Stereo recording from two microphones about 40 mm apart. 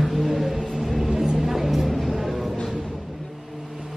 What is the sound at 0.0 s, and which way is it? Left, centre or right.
Vehicle, centre.